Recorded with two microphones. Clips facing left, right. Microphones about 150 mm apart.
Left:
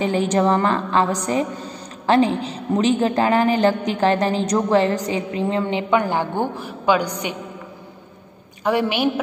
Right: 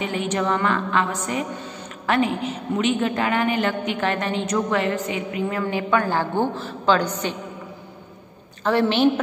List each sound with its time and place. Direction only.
0.0 s a woman's voice: 35° left (ahead or behind); by 7.3 s 15° left (ahead or behind)
8.6 s a woman's voice: 10° left (ahead or behind)